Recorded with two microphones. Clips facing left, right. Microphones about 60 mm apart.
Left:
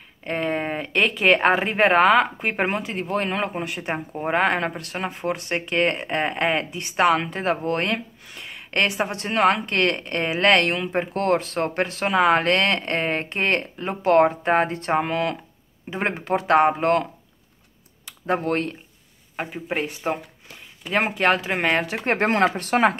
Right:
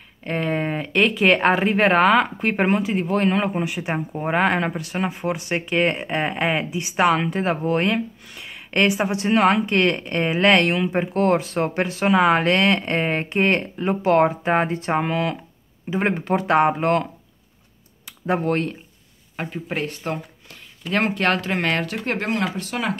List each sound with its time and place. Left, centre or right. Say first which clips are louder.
0.2 s speech: right 1 dB; centre; by 22.1 s left
22.1 s speech: left 5 dB; left